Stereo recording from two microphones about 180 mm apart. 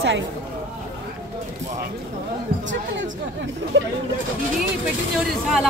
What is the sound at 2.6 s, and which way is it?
Speech, 90° right.